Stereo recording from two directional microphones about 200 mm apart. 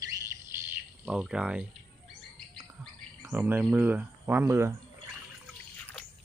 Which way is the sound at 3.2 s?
10° right (ahead or behind).